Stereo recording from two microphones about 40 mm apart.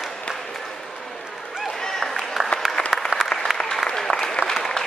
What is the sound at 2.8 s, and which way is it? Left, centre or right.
Applause, left.